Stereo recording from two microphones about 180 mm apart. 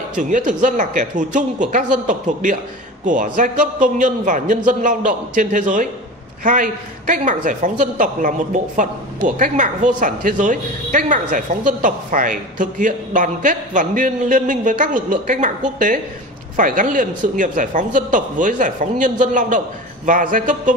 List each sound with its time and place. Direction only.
0.1 s a woman's voice: 45° right (ahead or behind)